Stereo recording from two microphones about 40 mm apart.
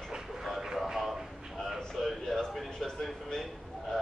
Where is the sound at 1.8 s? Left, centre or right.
Centre.